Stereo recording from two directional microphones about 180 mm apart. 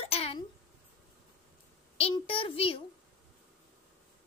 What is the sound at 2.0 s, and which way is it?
Speech, 30° left (ahead or behind).